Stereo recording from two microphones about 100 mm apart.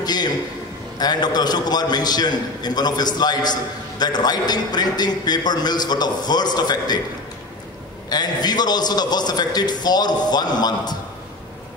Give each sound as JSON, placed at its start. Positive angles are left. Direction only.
{"t": 0.0, "sound": "a man's voice", "side_deg": 45}
{"t": 8.1, "sound": "a man's voice", "side_deg": 45}